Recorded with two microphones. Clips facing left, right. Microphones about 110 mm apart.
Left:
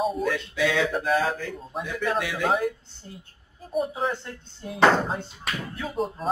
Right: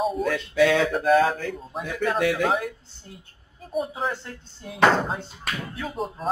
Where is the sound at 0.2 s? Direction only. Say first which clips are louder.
Right 4 dB; 50° right (ahead or behind).